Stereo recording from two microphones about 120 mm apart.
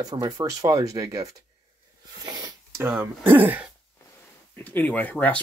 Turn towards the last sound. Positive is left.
turn(degrees=10)  # may be behind; listen again after turning